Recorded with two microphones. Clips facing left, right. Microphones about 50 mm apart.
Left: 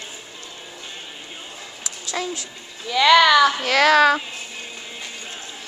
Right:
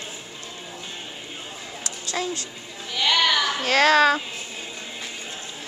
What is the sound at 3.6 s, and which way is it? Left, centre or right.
Speech, left.